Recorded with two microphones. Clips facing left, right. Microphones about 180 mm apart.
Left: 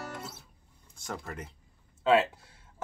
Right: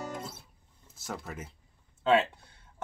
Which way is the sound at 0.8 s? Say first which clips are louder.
Even; 5° right (ahead or behind).